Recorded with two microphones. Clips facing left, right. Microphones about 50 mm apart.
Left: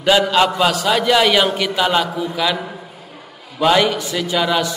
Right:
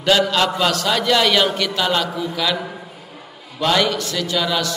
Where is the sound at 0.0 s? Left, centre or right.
Centre.